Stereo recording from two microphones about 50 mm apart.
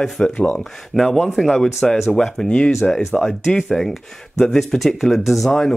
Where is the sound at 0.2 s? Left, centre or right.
Centre.